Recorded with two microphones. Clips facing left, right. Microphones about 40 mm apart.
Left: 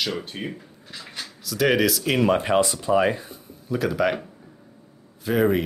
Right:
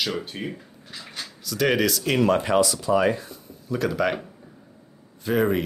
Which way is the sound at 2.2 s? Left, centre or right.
Centre.